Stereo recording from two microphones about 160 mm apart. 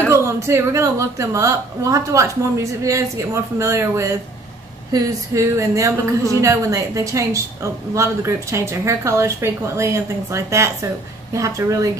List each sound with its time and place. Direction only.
0.1 s a woman's voice: 15° right (ahead or behind)